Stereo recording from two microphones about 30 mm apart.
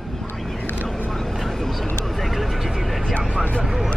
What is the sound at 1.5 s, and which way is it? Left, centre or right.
Vehicle, centre.